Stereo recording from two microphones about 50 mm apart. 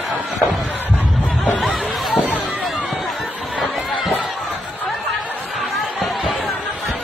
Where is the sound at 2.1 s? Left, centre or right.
Left.